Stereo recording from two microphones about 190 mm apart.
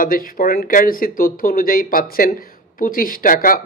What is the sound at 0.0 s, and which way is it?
A man's voice, 50° left (ahead or behind).